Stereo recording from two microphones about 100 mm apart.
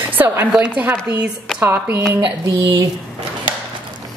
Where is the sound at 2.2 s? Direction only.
50° right (ahead or behind).